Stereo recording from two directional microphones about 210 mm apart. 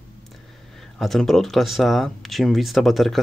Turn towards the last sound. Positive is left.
turn(degrees=0)  # may be behind; listen again after turning